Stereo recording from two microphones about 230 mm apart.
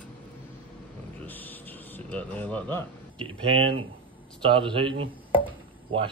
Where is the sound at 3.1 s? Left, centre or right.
Right.